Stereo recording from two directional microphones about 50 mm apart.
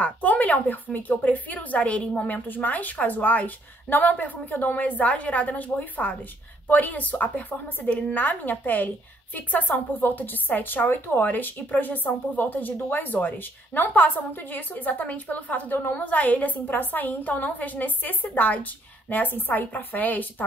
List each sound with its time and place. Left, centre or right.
0.0 s a woman's voice: left